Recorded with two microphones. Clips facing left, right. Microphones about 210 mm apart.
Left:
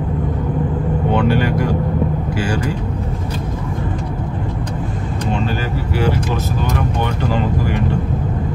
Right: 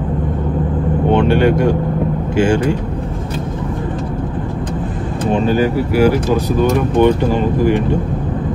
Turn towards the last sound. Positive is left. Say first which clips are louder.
# right 5 dB
turn(degrees=-20)  # may be behind; listen again after turning